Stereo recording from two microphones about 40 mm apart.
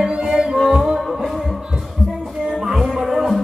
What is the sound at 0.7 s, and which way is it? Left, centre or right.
Music, centre.